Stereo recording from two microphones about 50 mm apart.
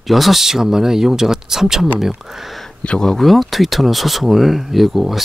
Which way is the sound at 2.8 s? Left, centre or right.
Left.